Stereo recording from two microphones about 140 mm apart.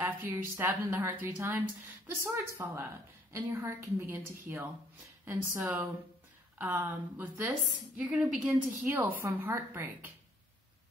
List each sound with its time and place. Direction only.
0.0 s a woman's voice: 15° right (ahead or behind)